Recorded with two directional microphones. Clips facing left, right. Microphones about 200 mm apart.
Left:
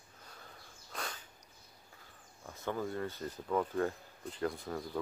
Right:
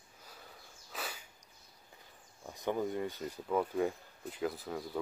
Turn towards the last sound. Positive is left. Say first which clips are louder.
# even
turn(degrees=-5)  # may be behind; listen again after turning